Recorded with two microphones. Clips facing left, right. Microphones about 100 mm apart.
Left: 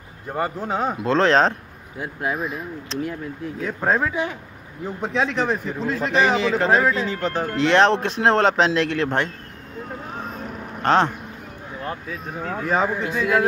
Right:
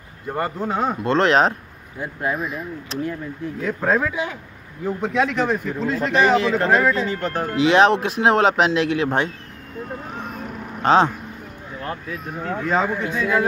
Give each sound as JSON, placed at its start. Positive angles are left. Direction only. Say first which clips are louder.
{"t": 0.7, "sound": "speech", "louder": "right 2 dB", "side_deg": 5}
{"t": 10.2, "sound": "vehicle", "louder": "right 1 dB", "side_deg": -5}
{"t": 10.9, "sound": "speech", "louder": "right 2 dB", "side_deg": -15}
{"t": 11.8, "sound": "speech", "louder": "right 1 dB", "side_deg": 0}